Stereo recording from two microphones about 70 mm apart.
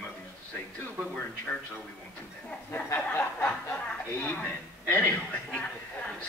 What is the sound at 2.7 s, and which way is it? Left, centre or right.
Snicker, left.